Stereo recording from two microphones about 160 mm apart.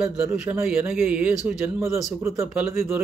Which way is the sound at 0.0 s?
15° right (ahead or behind).